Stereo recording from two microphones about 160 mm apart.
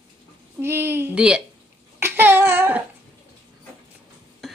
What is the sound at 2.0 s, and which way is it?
Babbling, 10° right (ahead or behind).